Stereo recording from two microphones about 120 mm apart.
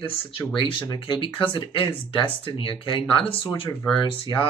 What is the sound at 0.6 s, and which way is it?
Speech, 45° left (ahead or behind).